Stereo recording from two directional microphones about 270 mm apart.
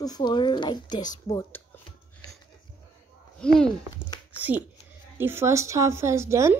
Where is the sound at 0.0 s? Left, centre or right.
Centre.